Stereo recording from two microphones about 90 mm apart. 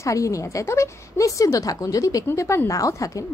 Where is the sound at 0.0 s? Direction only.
35° left (ahead or behind).